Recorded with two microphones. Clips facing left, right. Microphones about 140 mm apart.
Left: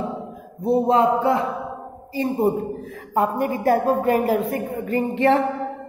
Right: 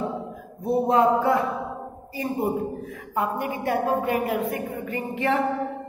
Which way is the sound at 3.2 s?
40° left (ahead or behind).